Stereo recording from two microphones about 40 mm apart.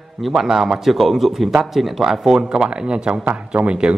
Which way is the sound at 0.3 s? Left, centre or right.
Centre.